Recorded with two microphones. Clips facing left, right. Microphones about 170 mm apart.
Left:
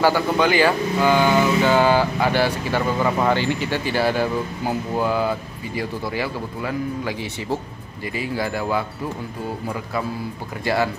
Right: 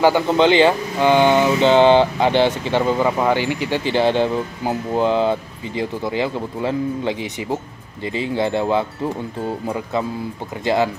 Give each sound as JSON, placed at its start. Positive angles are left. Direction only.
{"t": 0.0, "sound": "speech", "side_deg": -20}
{"t": 10.6, "sound": "speech", "side_deg": -20}